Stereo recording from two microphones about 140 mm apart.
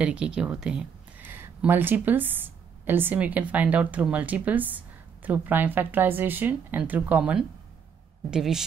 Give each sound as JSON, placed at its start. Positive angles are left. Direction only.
{"t": 0.0, "sound": "speech", "side_deg": -5}